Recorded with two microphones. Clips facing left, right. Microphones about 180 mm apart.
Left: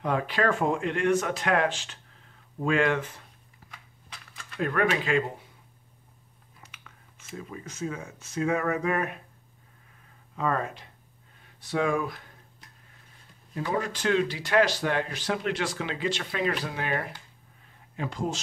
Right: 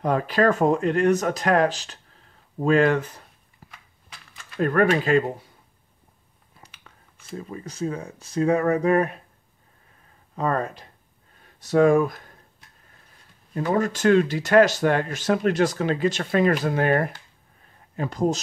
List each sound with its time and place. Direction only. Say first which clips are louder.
0.0 s speech: right 6 dB; 40° right (ahead or behind)
4.6 s speech: right 6 dB; 45° right (ahead or behind)
6.6 s speech: right 2 dB; 35° right (ahead or behind)
10.3 s speech: right 4 dB; 40° right (ahead or behind)
13.7 s speech: right 7 dB; 45° right (ahead or behind)